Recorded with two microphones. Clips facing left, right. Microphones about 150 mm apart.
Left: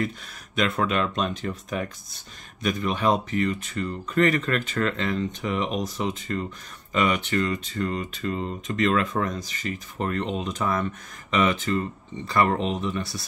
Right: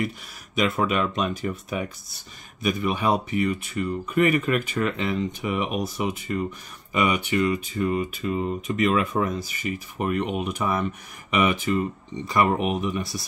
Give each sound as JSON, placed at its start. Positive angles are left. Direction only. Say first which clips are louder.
{"t": 0.6, "sound": "speech", "louder": "right 1 dB", "side_deg": -5}